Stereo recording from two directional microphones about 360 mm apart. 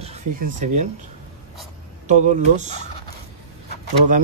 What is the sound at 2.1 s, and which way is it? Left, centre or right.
Speech, centre.